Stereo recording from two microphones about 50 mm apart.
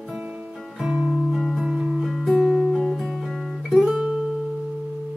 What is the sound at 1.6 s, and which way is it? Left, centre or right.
Music, right.